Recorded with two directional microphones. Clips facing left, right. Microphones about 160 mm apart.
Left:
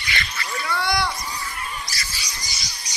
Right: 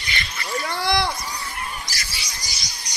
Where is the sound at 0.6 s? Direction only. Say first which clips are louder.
Right 1 dB; 35° right (ahead or behind).